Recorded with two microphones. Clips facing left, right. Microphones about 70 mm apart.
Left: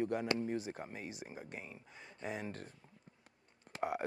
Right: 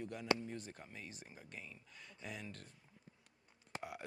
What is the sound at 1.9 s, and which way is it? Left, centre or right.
Speech, left.